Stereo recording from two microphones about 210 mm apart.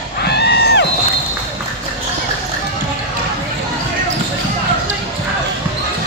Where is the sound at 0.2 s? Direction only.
50° left (ahead or behind).